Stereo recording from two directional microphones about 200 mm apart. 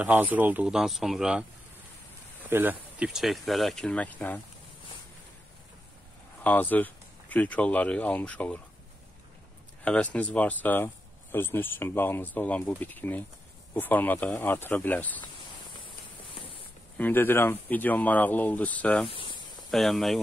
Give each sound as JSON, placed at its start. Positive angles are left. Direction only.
{"t": 0.0, "sound": "speech", "side_deg": -10}
{"t": 2.5, "sound": "speech", "side_deg": -10}
{"t": 6.4, "sound": "speech", "side_deg": 10}
{"t": 9.8, "sound": "speech", "side_deg": 5}
{"t": 16.9, "sound": "speech", "side_deg": 10}
{"t": 19.0, "sound": "snake", "side_deg": 25}
{"t": 19.7, "sound": "speech", "side_deg": 0}